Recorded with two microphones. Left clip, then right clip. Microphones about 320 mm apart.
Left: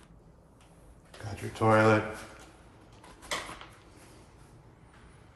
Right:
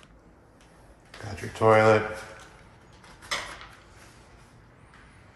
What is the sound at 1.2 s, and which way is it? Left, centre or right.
Speech, centre.